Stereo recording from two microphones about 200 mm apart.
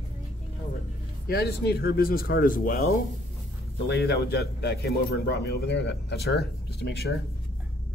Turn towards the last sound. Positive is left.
turn(degrees=55)  # may be behind; listen again after turning